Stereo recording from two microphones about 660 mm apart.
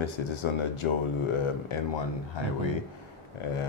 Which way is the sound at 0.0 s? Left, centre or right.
Left.